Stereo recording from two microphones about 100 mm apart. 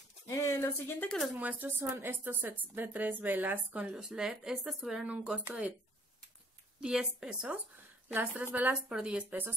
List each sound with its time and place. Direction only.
0.3 s speech: 30° left (ahead or behind)
1.4 s a woman's voice: 15° right (ahead or behind)
3.9 s a woman's voice: 5° right (ahead or behind)
6.8 s a woman's voice: 10° right (ahead or behind)